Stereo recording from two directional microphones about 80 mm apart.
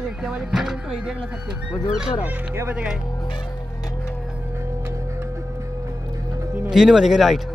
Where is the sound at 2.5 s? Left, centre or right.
Right.